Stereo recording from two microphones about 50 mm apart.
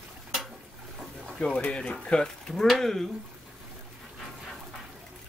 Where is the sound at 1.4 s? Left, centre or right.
Left.